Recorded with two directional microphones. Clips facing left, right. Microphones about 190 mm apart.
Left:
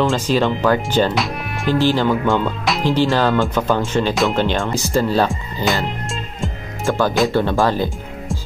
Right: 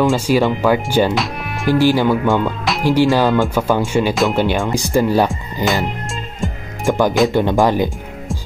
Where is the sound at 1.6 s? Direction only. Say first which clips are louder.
Right 3 dB; 10° right (ahead or behind).